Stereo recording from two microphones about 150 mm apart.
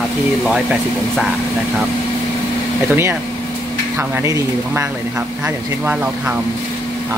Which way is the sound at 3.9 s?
20° right (ahead or behind).